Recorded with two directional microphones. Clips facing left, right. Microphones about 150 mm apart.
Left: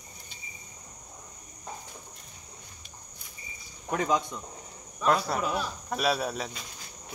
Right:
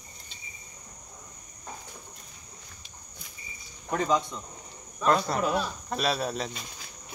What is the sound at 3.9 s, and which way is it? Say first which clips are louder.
Speech: right 1 dB; 5° left (ahead or behind).